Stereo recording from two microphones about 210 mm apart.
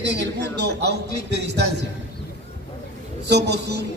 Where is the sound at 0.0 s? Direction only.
55° right (ahead or behind).